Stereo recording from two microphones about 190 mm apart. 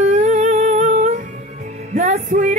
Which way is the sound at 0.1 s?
40° right (ahead or behind).